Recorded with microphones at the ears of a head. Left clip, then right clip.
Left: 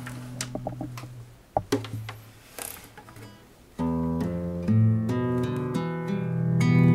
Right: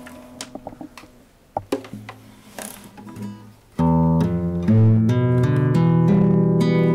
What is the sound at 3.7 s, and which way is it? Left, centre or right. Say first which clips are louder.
Music: right 9 dB; right.